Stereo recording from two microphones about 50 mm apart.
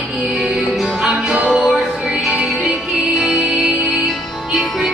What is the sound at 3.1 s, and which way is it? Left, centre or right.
Music, centre.